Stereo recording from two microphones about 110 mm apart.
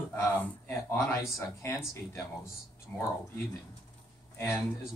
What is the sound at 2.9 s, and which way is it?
Speech, 20° left (ahead or behind).